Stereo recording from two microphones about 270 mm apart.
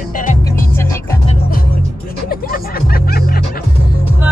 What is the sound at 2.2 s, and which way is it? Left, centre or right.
Music, left.